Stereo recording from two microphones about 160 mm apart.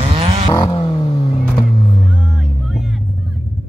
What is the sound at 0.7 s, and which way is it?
Vehicle, 35° left (ahead or behind).